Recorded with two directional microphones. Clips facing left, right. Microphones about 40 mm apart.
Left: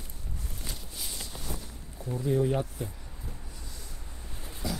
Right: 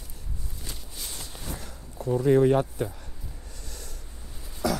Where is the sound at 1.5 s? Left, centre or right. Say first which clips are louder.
Right 4 dB; right.